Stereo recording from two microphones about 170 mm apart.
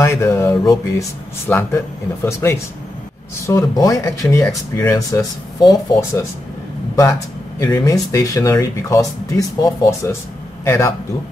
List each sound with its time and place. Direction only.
0.0 s speech: 15° left (ahead or behind)
7.6 s speech: 20° left (ahead or behind)